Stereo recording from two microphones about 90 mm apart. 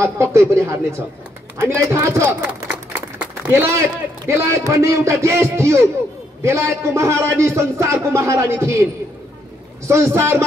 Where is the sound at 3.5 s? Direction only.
30° right (ahead or behind).